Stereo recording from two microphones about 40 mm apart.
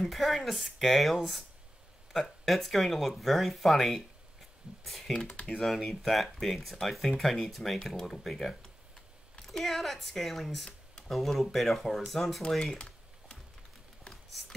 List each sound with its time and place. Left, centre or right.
0.1 s speech: centre
5.1 s speech: left
5.9 s speech: centre
12.7 s computer keyboard: left